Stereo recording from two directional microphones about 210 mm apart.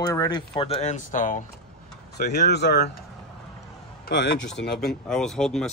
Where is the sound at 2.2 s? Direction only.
50° left (ahead or behind).